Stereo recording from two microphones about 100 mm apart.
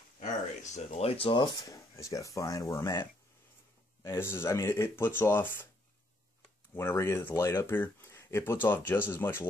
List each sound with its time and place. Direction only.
0.9 s speech: 80° left
1.4 s speech: 35° left (ahead or behind)
4.0 s speech: 25° left (ahead or behind)
6.7 s speech: 20° left (ahead or behind)